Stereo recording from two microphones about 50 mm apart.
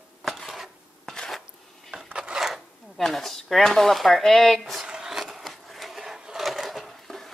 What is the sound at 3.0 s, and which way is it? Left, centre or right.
Speech, centre.